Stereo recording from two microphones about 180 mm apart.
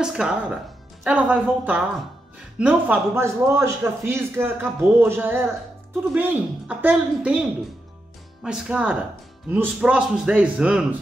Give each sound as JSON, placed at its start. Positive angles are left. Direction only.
{"t": 0.0, "sound": "a man's voice", "side_deg": -5}
{"t": 8.5, "sound": "a man's voice", "side_deg": -5}